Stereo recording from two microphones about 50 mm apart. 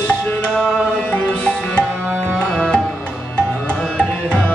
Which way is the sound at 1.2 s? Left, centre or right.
Left.